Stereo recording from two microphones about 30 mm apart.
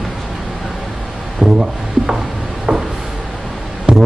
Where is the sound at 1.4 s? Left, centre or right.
Centre.